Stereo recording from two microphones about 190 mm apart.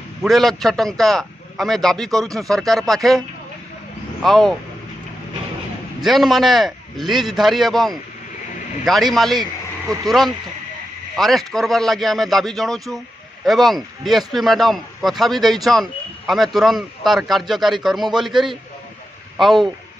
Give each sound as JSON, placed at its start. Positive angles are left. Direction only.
{"t": 0.2, "sound": "speech", "side_deg": 0}
{"t": 4.2, "sound": "speech", "side_deg": 0}
{"t": 6.0, "sound": "speech", "side_deg": 0}